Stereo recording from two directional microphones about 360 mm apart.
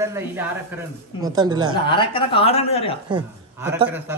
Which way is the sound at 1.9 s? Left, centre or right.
Centre.